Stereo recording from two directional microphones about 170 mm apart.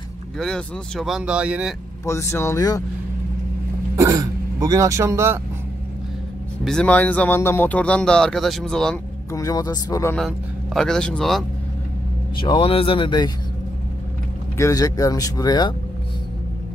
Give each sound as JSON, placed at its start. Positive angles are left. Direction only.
{"t": 0.4, "sound": "speech", "side_deg": 5}
{"t": 2.0, "sound": "speech", "side_deg": 15}
{"t": 3.9, "sound": "speech", "side_deg": -20}
{"t": 6.6, "sound": "speech", "side_deg": 5}
{"t": 9.3, "sound": "speech", "side_deg": 20}
{"t": 10.1, "sound": "speech", "side_deg": 0}
{"t": 12.4, "sound": "speech", "side_deg": 30}
{"t": 14.6, "sound": "speech", "side_deg": 20}